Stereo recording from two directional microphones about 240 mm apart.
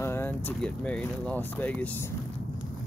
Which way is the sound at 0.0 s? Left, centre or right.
Centre.